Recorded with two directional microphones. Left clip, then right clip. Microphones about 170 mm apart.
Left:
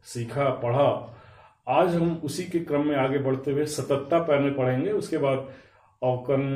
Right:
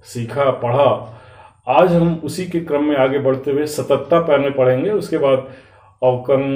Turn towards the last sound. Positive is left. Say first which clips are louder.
# right 10 dB
turn(degrees=-15)  # may be behind; listen again after turning